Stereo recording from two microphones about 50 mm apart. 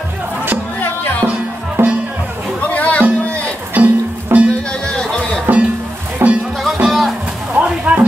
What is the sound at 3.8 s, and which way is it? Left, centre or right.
Music, right.